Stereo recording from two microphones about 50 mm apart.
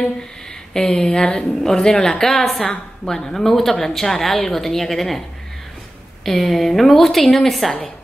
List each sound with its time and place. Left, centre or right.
0.7 s a woman's voice: centre
6.2 s a woman's voice: centre